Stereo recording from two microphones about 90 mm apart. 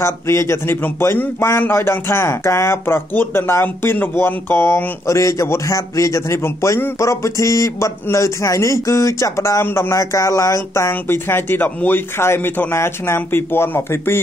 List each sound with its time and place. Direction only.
0.0 s a man's voice: 30° left (ahead or behind)